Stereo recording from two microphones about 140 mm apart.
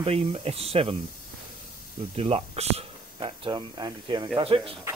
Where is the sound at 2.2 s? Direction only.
45° right (ahead or behind).